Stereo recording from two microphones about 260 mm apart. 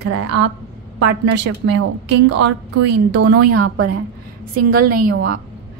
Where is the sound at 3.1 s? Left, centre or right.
Right.